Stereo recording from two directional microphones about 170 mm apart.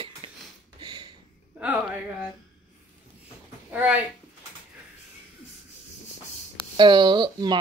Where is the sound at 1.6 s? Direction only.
10° right (ahead or behind).